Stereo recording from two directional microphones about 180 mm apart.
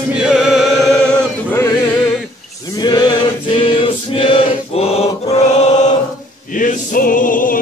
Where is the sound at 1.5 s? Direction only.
15° left (ahead or behind).